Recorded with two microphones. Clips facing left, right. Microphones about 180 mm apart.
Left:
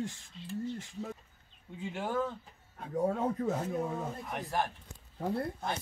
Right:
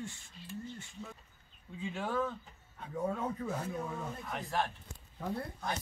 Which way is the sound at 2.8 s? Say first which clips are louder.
Left 5 dB; 35° left (ahead or behind).